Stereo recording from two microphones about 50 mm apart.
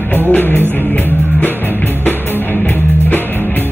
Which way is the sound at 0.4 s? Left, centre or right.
Left.